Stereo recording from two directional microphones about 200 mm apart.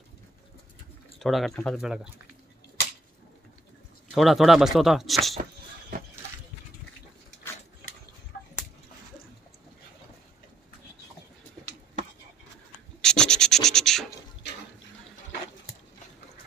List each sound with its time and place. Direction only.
1.2 s speech: centre (ahead or behind)
4.1 s speech: centre (ahead or behind)
5.4 s a sound: 45° right (ahead or behind)
13.0 s scratch: 5° left (ahead or behind)